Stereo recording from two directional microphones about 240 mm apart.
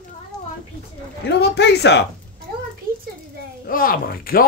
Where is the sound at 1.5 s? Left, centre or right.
Left.